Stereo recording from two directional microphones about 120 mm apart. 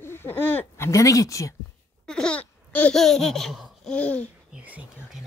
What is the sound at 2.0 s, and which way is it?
Babbling, 5° left (ahead or behind).